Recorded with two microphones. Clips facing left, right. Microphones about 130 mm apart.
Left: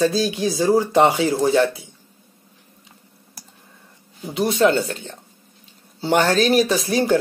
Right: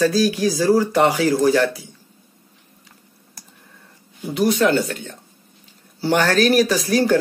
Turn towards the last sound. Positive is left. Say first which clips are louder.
# right 1 dB
turn(degrees=25)  # may be behind; listen again after turning